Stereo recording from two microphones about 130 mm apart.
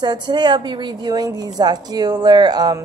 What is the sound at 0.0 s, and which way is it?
A woman's voice, 35° right (ahead or behind).